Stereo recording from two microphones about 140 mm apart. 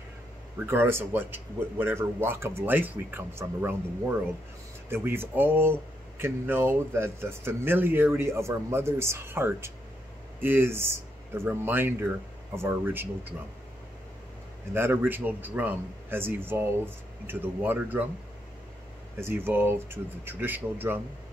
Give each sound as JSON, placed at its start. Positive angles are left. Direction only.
{"t": 0.7, "sound": "speech", "side_deg": -15}
{"t": 14.7, "sound": "speech", "side_deg": -15}
{"t": 19.1, "sound": "speech", "side_deg": -15}